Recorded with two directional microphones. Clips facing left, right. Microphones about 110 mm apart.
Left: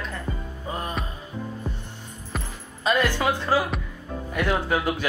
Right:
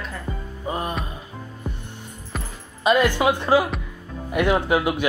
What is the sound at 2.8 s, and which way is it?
Speech, 15° right (ahead or behind).